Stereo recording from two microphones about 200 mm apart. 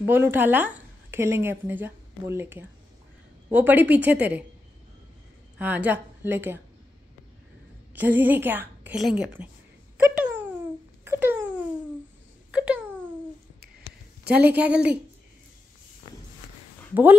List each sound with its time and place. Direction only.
0.0 s a woman's voice: 10° right (ahead or behind)
5.6 s a woman's voice: 10° right (ahead or behind)
7.9 s a woman's voice: 10° right (ahead or behind)
10.0 s wail: 10° right (ahead or behind)
11.1 s a sound: 10° right (ahead or behind)
12.4 s wail: 5° right (ahead or behind)
14.3 s a woman's voice: 10° right (ahead or behind)